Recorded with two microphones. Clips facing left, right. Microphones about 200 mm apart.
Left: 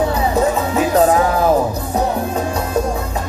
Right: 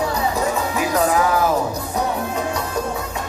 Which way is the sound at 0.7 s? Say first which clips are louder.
Left 6 dB; 30° left (ahead or behind).